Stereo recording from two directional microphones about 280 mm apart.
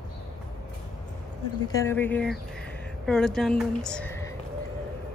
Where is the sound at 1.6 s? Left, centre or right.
Centre.